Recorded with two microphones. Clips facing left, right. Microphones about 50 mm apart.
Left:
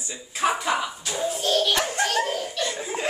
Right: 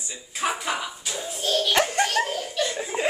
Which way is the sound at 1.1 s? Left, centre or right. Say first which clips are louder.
Left 3 dB; centre.